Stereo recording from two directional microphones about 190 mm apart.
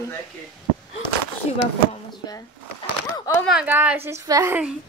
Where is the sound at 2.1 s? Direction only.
20° left (ahead or behind).